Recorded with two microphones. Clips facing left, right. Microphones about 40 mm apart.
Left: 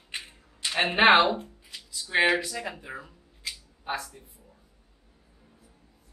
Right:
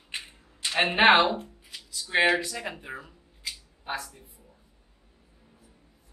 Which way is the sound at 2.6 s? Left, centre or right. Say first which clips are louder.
Even; centre.